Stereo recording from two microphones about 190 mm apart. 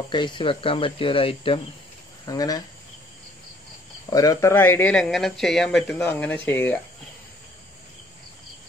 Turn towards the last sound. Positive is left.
turn(degrees=10)  # may be behind; listen again after turning